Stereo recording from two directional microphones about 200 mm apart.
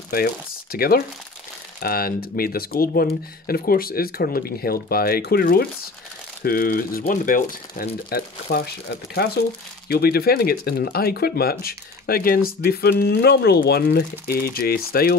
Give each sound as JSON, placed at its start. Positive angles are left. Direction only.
{"t": 0.1, "sound": "speech", "side_deg": 50}